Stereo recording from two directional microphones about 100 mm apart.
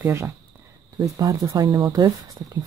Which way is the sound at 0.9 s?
35° right (ahead or behind).